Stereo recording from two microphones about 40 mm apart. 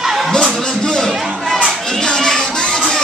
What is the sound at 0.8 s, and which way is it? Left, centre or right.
Music, centre.